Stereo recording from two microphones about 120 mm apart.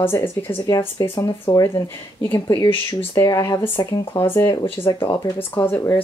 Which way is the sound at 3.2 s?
30° left (ahead or behind).